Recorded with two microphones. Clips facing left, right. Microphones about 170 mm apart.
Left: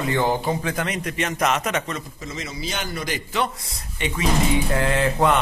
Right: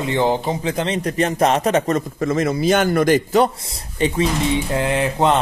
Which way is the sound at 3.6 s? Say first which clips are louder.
Right 8 dB; 30° right (ahead or behind).